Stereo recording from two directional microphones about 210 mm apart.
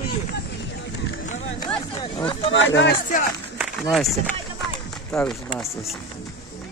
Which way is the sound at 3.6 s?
Centre (ahead or behind).